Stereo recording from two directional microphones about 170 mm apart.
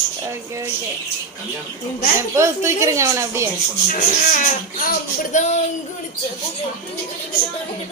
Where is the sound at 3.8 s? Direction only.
50° left (ahead or behind).